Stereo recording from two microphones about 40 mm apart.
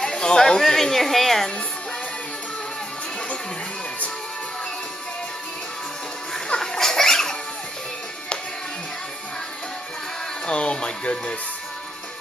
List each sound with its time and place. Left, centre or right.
0.0 s a woman's voice: centre
6.6 s a sound: centre
10.4 s music: left